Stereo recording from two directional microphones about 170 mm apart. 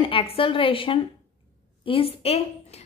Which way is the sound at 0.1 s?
30° left (ahead or behind).